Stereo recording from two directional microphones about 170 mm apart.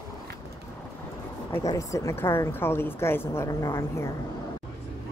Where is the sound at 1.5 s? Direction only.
20° left (ahead or behind).